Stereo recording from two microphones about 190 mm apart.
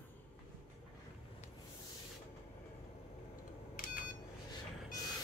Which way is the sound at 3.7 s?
45° left (ahead or behind).